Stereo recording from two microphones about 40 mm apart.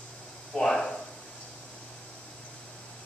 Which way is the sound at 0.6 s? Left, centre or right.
Centre.